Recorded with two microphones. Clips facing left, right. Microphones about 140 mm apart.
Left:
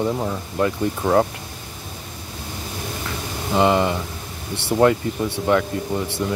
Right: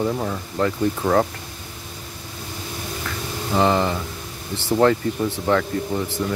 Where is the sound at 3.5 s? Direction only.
15° left (ahead or behind).